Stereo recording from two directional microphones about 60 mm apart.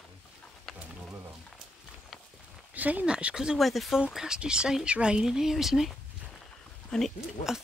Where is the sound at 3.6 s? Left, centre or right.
Centre.